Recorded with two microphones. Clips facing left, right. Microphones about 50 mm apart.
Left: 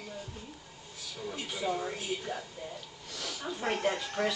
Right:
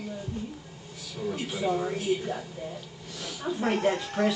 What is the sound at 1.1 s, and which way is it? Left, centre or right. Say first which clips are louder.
Speech: right 7 dB; centre.